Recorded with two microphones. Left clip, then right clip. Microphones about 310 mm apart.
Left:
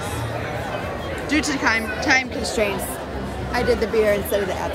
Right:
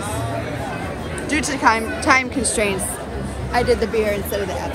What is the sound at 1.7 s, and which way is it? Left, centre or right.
Speech, centre.